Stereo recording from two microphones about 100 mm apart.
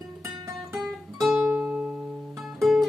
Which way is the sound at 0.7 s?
Centre (ahead or behind).